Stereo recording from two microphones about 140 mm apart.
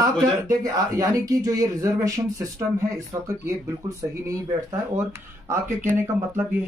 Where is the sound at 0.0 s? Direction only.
25° right (ahead or behind).